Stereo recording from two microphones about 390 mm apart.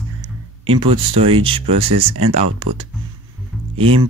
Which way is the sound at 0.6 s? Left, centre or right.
Centre.